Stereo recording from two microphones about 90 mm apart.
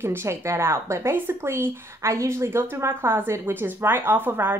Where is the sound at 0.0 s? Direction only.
25° right (ahead or behind).